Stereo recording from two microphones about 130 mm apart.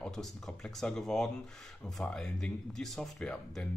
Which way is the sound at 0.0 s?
5° left (ahead or behind).